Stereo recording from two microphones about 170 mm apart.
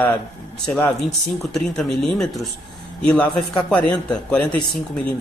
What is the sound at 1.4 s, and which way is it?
A man's voice, 5° left (ahead or behind).